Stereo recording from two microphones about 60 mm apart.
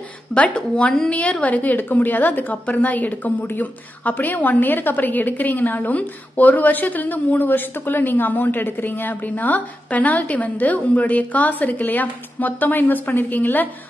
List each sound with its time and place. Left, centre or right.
0.3 s speech: centre
1.4 s a woman's voice: left